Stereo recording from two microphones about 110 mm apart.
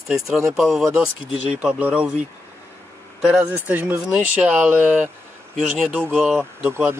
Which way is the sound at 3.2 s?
10° right (ahead or behind).